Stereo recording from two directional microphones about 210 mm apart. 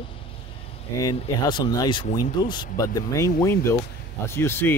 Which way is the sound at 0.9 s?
20° left (ahead or behind).